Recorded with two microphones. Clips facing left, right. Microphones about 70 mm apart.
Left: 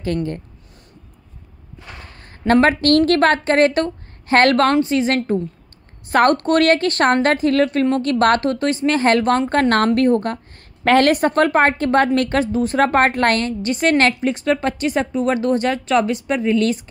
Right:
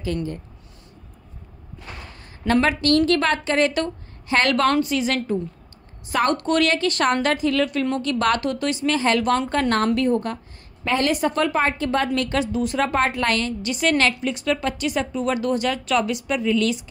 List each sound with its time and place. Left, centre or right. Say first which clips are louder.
0.0 s a woman's voice: left 4 dB; left
2.4 s a woman's voice: left 5 dB; left
8.0 s a woman's voice: left 5 dB; left